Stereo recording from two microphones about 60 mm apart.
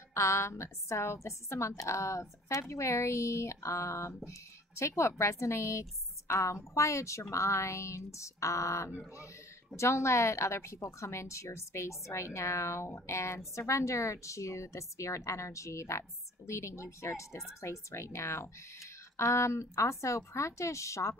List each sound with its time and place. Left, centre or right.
0.1 s a woman's voice: left